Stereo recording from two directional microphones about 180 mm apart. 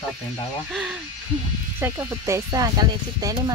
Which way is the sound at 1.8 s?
15° right (ahead or behind).